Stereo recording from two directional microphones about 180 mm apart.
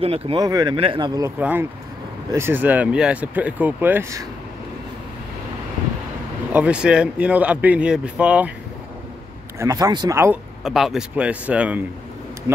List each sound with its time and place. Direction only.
0.0 s speech: 35° right (ahead or behind)
0.4 s speech: 20° right (ahead or behind)
1.4 s speech: 10° right (ahead or behind)
6.5 s speech: 5° right (ahead or behind)
9.6 s speech: 20° right (ahead or behind)
10.6 s speech: centre (ahead or behind)